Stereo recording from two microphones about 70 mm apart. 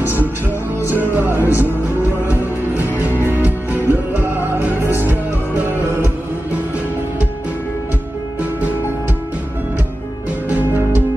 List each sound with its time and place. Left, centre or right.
0.9 s music: right
10.5 s music: right